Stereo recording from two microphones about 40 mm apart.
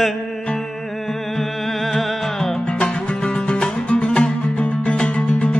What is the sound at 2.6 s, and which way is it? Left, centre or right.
Music, left.